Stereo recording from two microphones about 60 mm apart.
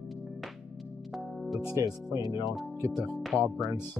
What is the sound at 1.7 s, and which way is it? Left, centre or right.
Speech, right.